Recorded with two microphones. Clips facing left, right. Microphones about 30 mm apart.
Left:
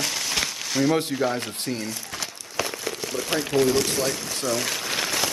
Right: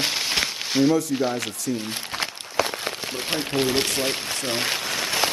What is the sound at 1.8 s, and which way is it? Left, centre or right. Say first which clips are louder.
Speech: right 3 dB; right.